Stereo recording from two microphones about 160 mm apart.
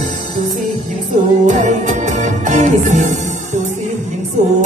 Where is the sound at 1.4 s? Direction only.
50° right (ahead or behind).